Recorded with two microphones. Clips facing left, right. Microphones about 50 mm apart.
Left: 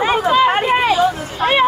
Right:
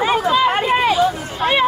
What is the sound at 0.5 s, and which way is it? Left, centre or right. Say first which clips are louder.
Chatter: left 1 dB; left.